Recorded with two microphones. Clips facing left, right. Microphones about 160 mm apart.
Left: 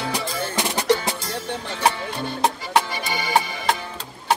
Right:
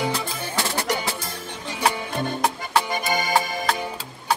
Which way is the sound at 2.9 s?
45° right (ahead or behind).